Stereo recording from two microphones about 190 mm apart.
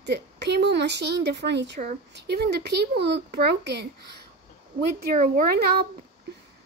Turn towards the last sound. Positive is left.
turn(degrees=-50)  # may be behind; listen again after turning